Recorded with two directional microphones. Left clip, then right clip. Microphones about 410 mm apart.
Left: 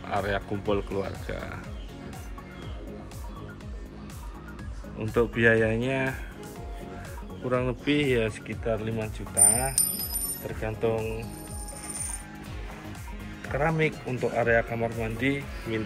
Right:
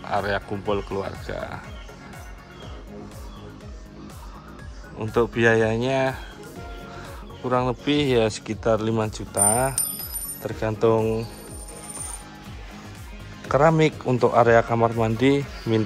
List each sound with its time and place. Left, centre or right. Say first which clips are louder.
0.1 s speech: right 4 dB; centre
4.9 s speech: right 3 dB; centre
7.4 s speech: right 4 dB; centre
8.6 s speech: right 8 dB; right
10.9 s speech: right 9 dB; centre
13.5 s speech: right 8 dB; right
15.1 s speech: right 6 dB; centre